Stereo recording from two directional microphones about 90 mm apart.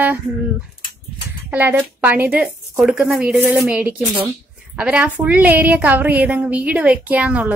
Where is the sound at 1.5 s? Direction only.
20° right (ahead or behind).